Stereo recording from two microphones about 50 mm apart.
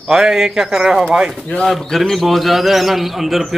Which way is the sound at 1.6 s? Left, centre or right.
Centre.